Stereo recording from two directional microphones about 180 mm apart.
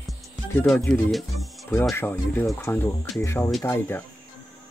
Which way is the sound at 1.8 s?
15° left (ahead or behind).